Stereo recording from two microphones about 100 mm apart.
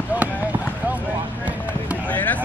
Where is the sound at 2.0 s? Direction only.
15° left (ahead or behind).